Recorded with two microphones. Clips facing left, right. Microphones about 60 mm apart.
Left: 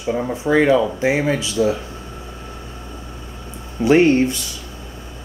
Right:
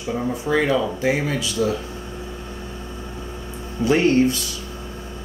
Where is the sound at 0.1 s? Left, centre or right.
Left.